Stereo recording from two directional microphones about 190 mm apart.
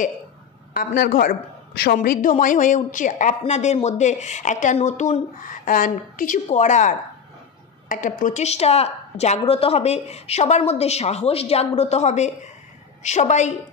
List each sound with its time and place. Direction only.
0.7 s speech: 50° left (ahead or behind)
2.0 s a woman's voice: 45° left (ahead or behind)